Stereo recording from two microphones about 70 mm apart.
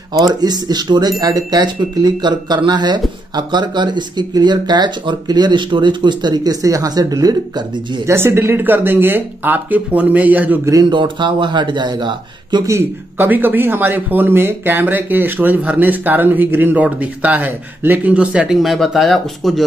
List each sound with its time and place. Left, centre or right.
0.2 s speech: right
8.1 s speech: right
10.6 s speech: right
10.9 s speech: right
13.2 s speech: right
18.5 s speech: centre